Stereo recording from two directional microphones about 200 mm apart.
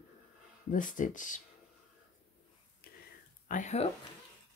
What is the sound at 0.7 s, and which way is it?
Speech, 40° left (ahead or behind).